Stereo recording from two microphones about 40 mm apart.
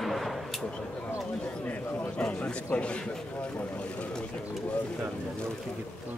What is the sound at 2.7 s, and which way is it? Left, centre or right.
Speech, left.